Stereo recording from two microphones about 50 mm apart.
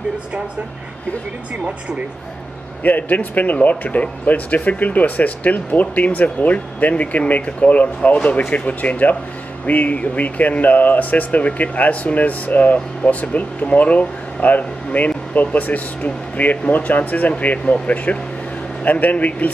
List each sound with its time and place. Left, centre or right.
2.8 s speech: left